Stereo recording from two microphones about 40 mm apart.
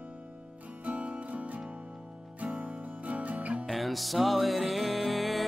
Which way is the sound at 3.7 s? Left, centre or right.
Centre.